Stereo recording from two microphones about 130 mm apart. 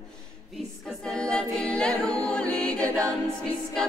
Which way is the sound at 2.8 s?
25° right (ahead or behind).